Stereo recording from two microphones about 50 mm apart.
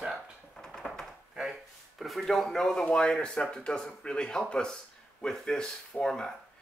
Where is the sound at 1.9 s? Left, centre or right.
Centre.